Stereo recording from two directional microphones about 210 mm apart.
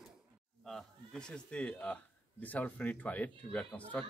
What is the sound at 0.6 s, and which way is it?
Speech, centre (ahead or behind).